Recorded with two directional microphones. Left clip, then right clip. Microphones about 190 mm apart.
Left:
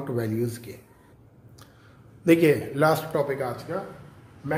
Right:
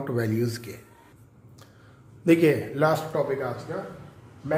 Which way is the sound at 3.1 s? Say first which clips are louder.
Left 1 dB; 40° left (ahead or behind).